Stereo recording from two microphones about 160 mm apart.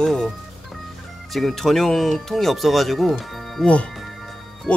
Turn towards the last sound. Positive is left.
turn(degrees=5)  # may be behind; listen again after turning